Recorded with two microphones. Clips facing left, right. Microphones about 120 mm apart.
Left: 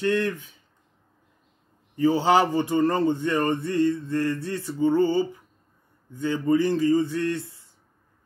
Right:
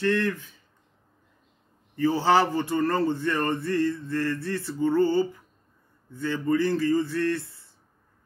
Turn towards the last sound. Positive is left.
turn(degrees=15)  # may be behind; listen again after turning